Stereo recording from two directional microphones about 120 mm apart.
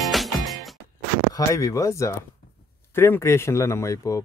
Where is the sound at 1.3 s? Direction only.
25° left (ahead or behind).